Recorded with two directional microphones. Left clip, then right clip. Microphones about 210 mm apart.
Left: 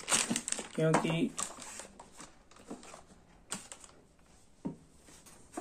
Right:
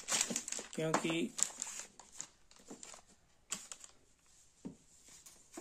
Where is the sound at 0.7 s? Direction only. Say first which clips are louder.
Left 5 dB; 25° right (ahead or behind).